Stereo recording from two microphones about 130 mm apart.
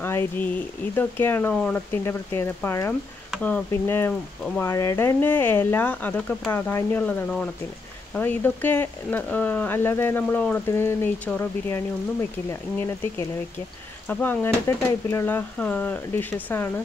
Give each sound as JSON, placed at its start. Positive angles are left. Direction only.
{"t": 0.0, "sound": "speech", "side_deg": 20}
{"t": 1.5, "sound": "speech", "side_deg": 5}
{"t": 2.0, "sound": "speech", "side_deg": 20}
{"t": 14.0, "sound": "speech", "side_deg": 15}